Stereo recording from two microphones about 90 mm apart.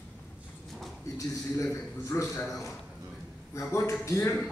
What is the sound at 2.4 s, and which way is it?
Speech, centre (ahead or behind).